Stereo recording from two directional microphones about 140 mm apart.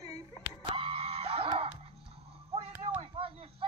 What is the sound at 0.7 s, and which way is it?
Screaming, 40° right (ahead or behind).